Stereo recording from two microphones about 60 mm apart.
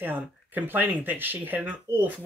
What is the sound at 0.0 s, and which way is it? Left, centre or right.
Speech, right.